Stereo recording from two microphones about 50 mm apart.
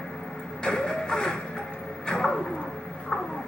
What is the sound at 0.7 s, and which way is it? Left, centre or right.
Music, centre.